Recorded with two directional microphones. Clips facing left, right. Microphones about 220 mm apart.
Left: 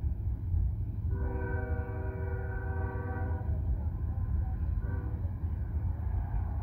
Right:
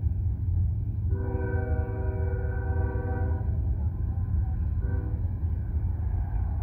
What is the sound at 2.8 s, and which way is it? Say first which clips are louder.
Train: right 6 dB; 40° right (ahead or behind).